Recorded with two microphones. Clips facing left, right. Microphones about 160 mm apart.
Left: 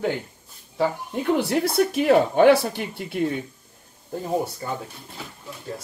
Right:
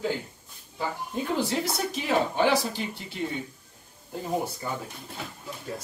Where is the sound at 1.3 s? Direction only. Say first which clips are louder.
Left 7 dB; 65° left (ahead or behind).